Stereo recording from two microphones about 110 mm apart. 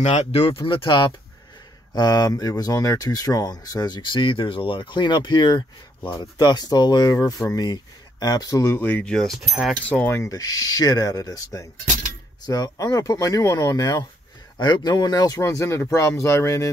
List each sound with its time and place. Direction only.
0.0 s speech: 80° left
0.7 s speech: 50° left (ahead or behind); by 8.7 s 30° left (ahead or behind)
8.7 s speech: 15° left (ahead or behind)
9.1 s speech: 5° left (ahead or behind)
9.8 s speech: 15° left (ahead or behind)